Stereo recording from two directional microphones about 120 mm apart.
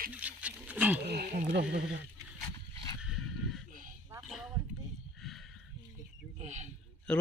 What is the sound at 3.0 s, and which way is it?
Dog, centre (ahead or behind).